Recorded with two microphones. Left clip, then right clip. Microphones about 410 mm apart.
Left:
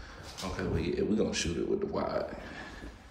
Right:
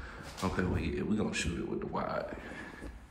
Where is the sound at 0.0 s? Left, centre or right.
Centre.